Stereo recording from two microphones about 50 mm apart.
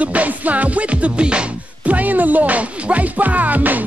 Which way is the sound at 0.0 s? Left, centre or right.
Right.